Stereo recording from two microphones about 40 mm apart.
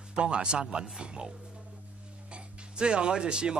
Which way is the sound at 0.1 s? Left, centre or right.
Right.